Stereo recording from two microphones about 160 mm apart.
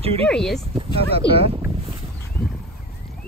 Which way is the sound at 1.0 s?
35° right (ahead or behind).